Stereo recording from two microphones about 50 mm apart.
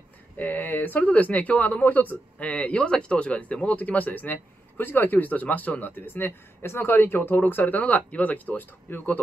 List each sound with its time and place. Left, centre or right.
0.4 s speech: left
2.3 s speech: left